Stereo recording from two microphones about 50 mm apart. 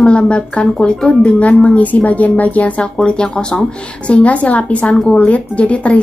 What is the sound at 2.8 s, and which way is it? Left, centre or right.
Speech, centre.